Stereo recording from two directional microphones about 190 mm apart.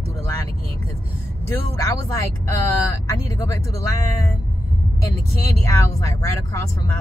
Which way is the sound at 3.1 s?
15° left (ahead or behind).